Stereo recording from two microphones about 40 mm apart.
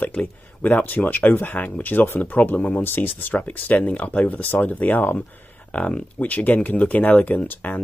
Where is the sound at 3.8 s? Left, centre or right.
Left.